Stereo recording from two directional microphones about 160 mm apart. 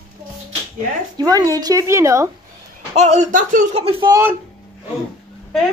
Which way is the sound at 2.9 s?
45° right (ahead or behind).